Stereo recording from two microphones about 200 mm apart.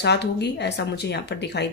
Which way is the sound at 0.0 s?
60° left (ahead or behind).